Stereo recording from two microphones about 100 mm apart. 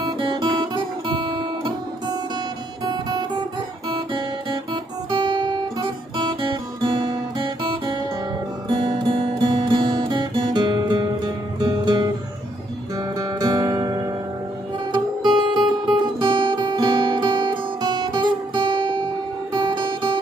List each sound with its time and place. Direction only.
0.0 s guitar: 45° right (ahead or behind)
2.8 s music: 45° right (ahead or behind)
5.1 s guitar: 60° right (ahead or behind)
5.8 s guitar: 45° right (ahead or behind)
8.6 s music: 60° right (ahead or behind)
13.2 s music: 40° right (ahead or behind)
15.2 s music: 50° right (ahead or behind)
17.8 s music: 45° right (ahead or behind)